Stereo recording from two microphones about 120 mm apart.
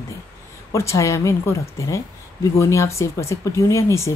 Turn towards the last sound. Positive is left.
turn(degrees=25)  # may be behind; listen again after turning